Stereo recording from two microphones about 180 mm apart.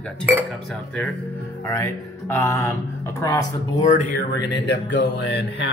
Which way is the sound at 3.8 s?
45° left (ahead or behind).